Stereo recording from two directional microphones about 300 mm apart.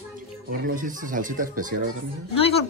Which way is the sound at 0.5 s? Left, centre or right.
Right.